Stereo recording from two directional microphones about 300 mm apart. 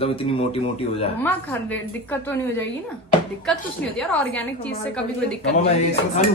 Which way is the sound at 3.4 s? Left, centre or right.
Centre.